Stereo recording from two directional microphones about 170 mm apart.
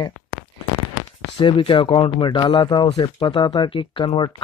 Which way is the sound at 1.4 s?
30° left (ahead or behind).